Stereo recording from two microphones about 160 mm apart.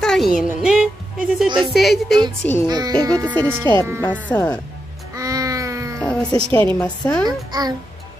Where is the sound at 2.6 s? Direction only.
25° right (ahead or behind).